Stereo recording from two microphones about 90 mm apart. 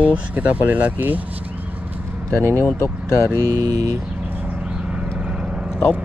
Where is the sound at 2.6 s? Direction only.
25° left (ahead or behind).